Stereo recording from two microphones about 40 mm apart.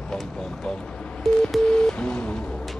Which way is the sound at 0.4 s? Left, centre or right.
Centre.